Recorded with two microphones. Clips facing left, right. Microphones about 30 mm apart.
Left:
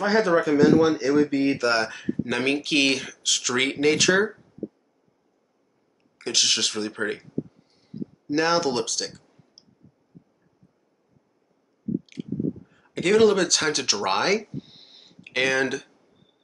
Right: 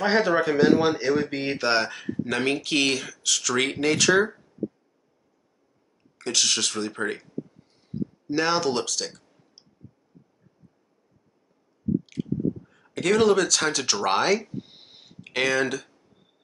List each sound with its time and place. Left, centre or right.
0.0 s speech: centre
1.9 s speech: centre
6.1 s speech: centre
8.3 s speech: centre
12.1 s speech: centre
14.6 s a sound: centre